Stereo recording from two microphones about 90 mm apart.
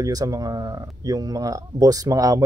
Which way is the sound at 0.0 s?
45° right (ahead or behind).